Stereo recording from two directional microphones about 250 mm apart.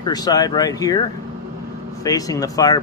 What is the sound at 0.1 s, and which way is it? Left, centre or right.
Speech, centre.